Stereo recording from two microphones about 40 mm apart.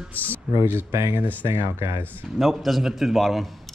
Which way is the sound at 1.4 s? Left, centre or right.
Right.